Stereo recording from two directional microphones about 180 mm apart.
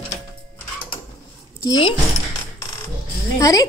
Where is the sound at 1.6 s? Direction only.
25° left (ahead or behind).